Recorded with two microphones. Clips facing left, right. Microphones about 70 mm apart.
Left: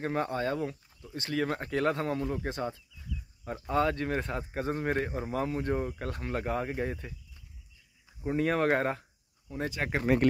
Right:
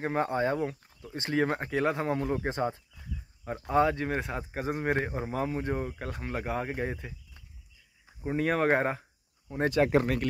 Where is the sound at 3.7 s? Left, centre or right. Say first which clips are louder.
Right 2 dB; centre.